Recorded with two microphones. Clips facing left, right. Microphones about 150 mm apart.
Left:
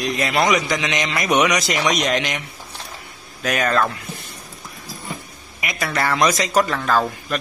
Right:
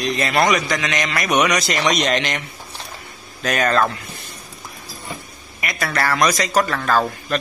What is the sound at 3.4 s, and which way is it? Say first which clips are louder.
Speech: right 1 dB; 5° left (ahead or behind).